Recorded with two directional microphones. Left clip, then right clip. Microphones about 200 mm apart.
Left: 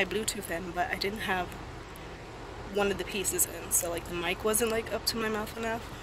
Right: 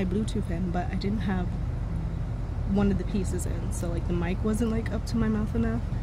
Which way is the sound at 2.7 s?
Centre (ahead or behind).